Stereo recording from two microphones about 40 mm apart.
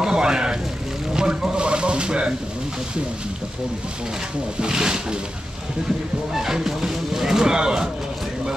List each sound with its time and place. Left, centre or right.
0.0 s speech: centre
1.1 s a sound: centre
4.6 s speech: centre
6.3 s speech: centre